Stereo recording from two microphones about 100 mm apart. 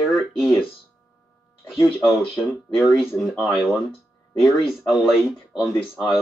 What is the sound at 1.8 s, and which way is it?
Speech, 25° left (ahead or behind).